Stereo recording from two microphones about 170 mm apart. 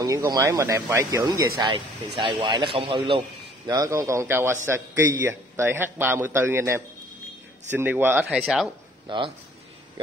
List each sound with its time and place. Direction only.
0.0 s a man's voice: 20° right (ahead or behind)
3.7 s a man's voice: 20° right (ahead or behind)
8.3 s speech: centre (ahead or behind)